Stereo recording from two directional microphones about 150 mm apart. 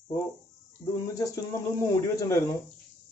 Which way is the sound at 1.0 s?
20° left (ahead or behind).